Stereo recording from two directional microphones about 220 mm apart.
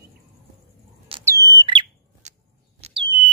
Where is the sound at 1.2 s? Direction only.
15° right (ahead or behind).